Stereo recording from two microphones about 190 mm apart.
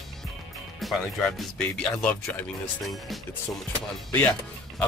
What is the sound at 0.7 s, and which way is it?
Speech, centre (ahead or behind).